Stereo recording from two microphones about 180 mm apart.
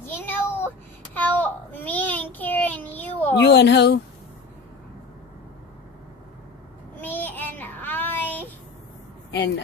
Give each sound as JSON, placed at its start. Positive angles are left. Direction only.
{"t": 0.0, "sound": "a sound", "side_deg": 10}
{"t": 3.3, "sound": "speech", "side_deg": 70}
{"t": 7.0, "sound": "child singing", "side_deg": 10}